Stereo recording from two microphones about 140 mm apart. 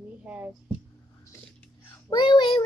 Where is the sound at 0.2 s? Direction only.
10° right (ahead or behind).